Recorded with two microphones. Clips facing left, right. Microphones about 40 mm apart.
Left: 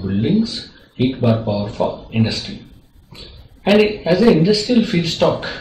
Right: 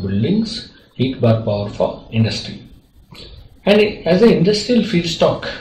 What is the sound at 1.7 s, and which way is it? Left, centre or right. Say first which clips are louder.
Speech: right 1 dB; centre.